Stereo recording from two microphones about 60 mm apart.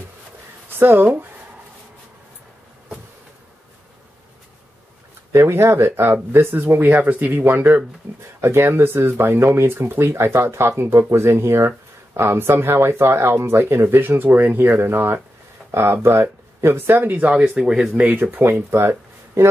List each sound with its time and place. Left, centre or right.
0.7 s speech: right
5.3 s speech: right
17.3 s speech: centre
17.9 s speech: right
18.2 s speech: right
18.7 s a sound: right